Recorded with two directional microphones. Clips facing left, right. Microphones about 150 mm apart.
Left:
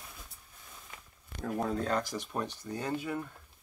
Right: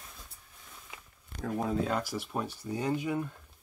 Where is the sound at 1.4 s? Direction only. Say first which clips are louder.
Right 1 dB; 5° right (ahead or behind).